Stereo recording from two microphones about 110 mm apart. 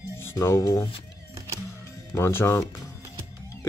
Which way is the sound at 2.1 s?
20° left (ahead or behind).